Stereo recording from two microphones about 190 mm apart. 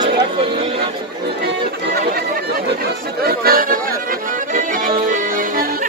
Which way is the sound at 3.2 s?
55° right (ahead or behind).